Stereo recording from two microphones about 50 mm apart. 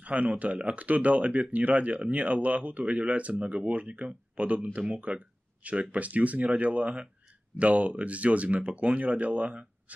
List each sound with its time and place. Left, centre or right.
0.0 s speech: right